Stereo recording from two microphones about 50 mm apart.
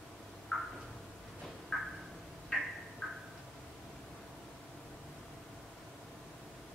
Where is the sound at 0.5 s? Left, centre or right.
Centre.